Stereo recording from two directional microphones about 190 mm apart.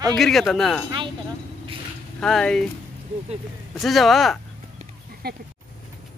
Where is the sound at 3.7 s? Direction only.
Centre (ahead or behind).